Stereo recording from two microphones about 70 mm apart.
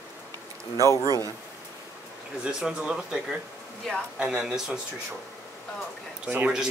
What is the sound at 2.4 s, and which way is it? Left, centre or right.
Speech, centre.